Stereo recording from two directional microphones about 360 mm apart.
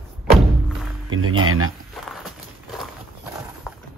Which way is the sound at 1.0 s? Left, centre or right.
Right.